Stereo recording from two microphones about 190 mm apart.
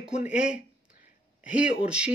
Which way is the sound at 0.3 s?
5° right (ahead or behind).